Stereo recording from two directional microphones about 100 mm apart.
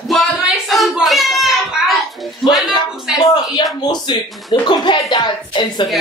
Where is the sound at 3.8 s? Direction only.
50° left (ahead or behind).